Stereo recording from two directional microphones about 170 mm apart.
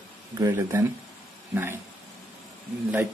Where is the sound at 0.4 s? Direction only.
15° right (ahead or behind).